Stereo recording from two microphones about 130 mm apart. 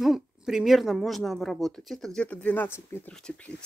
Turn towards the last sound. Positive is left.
turn(degrees=20)  # may be behind; listen again after turning